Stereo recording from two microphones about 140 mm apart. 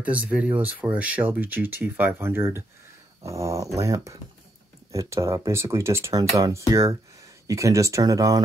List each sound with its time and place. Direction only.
0.0 s speech: 10° right (ahead or behind); by 8.4 s 25° right (ahead or behind)